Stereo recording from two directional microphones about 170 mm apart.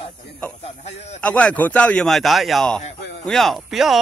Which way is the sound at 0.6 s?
40° left (ahead or behind).